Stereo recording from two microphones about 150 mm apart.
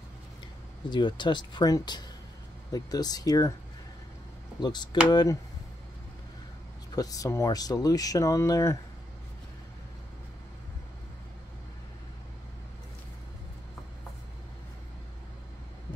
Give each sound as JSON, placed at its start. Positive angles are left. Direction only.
{"t": 0.8, "sound": "speech", "side_deg": 30}
{"t": 4.6, "sound": "speech", "side_deg": 30}
{"t": 7.0, "sound": "speech", "side_deg": 25}